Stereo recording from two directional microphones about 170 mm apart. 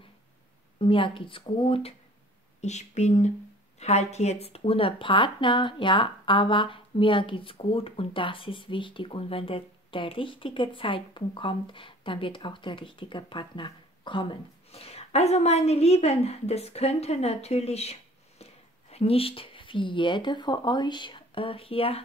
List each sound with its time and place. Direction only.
0.7 s speech: 30° left (ahead or behind)